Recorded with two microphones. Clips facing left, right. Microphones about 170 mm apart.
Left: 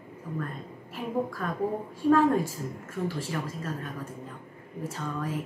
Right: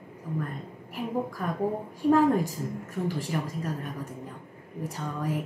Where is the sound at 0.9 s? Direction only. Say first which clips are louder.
Even; 15° right (ahead or behind).